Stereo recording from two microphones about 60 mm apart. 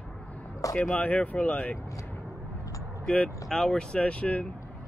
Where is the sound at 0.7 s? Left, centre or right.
Centre.